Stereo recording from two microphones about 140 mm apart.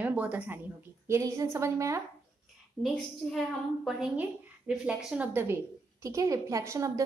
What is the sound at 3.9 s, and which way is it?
Speech, 5° right (ahead or behind).